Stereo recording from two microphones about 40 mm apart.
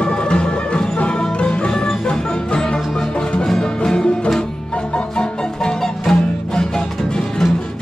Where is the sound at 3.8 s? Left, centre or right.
Centre.